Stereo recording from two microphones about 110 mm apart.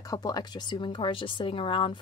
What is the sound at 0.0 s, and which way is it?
Speech, 35° left (ahead or behind).